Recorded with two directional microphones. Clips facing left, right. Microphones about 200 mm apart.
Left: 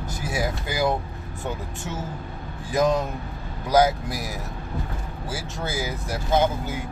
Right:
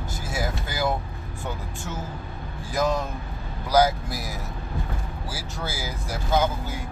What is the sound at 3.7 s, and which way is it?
Speech, 15° left (ahead or behind).